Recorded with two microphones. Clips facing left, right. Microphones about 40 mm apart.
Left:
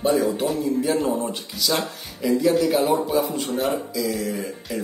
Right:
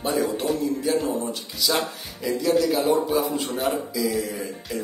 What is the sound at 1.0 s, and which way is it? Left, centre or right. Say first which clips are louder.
Speech: left 2 dB; left.